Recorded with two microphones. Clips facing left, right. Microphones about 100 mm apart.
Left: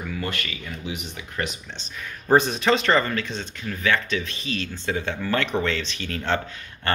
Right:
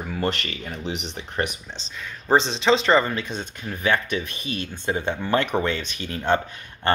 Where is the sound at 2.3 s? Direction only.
5° left (ahead or behind).